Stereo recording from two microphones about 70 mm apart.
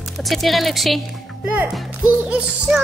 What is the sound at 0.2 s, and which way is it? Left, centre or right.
Speech, centre.